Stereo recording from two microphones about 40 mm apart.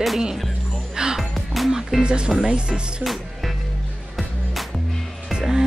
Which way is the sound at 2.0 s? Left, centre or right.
Right.